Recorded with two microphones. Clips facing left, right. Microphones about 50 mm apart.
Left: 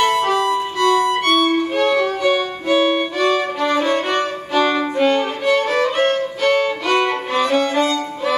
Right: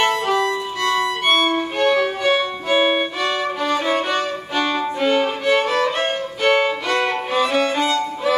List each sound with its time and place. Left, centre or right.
1.4 s violin: right
2.0 s violin: centre
5.0 s music: centre
6.0 s violin: right
7.3 s music: centre
7.7 s violin: centre